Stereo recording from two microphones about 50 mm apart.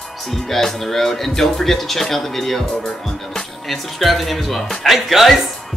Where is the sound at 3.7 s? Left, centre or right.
Centre.